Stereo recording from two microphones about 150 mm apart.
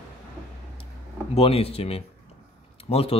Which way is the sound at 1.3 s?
40° left (ahead or behind).